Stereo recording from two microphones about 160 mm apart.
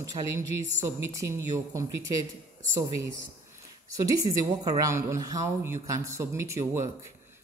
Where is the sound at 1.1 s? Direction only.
20° right (ahead or behind).